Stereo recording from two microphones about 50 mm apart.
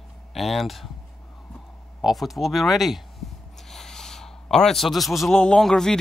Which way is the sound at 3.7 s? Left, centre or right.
Centre.